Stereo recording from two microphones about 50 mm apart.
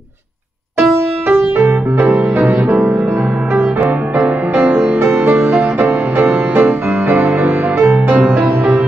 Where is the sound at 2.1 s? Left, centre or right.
Right.